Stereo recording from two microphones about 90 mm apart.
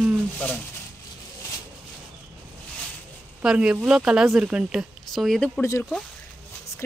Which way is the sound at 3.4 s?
10° right (ahead or behind).